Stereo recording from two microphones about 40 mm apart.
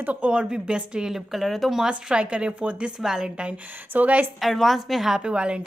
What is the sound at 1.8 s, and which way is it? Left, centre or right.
Speech, right.